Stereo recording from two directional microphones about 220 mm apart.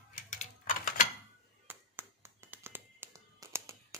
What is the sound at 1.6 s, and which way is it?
Music, 10° right (ahead or behind).